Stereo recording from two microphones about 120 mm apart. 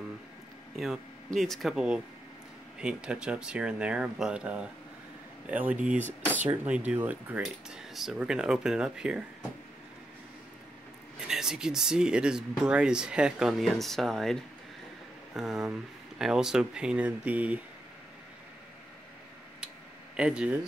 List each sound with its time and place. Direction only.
0.7 s speech: centre (ahead or behind)
7.4 s speech: centre (ahead or behind)
11.1 s speech: 5° right (ahead or behind)
20.2 s speech: 10° right (ahead or behind)